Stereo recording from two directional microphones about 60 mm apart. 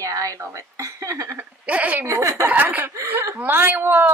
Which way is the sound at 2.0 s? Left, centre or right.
Right.